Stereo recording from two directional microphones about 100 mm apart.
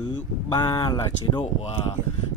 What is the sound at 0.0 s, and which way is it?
Speech, 45° left (ahead or behind).